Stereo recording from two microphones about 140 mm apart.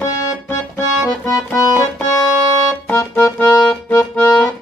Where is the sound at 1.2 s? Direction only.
25° left (ahead or behind).